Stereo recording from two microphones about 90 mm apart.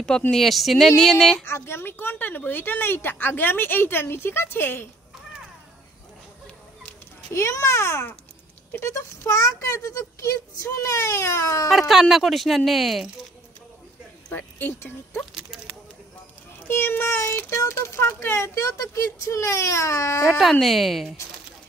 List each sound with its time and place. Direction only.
0.3 s speech: centre (ahead or behind)
1.4 s a woman's voice: 25° left (ahead or behind)
7.3 s a woman's voice: 30° left (ahead or behind)
11.9 s speech: 5° right (ahead or behind)
14.3 s a woman's voice: 25° left (ahead or behind)
15.5 s speech: 5° right (ahead or behind)
16.6 s speech: 25° left (ahead or behind)
20.2 s speech: 5° right (ahead or behind)